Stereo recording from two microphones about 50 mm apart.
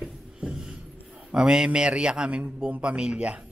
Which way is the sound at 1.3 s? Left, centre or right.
Centre.